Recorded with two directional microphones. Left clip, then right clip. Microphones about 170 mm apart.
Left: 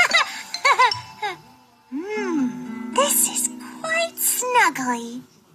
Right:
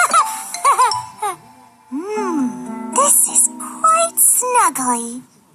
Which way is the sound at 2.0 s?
50° right (ahead or behind).